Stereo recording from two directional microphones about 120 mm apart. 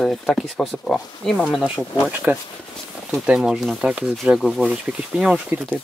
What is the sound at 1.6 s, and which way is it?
Speech, 10° right (ahead or behind).